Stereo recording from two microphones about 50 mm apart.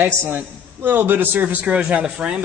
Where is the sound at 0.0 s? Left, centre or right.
Right.